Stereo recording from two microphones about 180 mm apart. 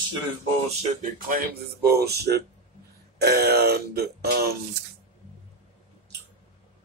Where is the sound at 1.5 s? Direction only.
60° right (ahead or behind).